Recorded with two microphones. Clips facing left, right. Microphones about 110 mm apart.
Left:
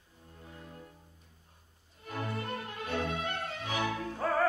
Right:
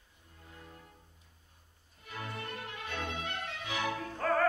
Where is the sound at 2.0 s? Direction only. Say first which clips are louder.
Left 5 dB; 40° left (ahead or behind).